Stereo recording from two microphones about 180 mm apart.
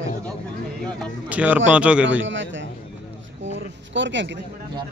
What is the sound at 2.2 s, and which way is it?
Speech, 90° right.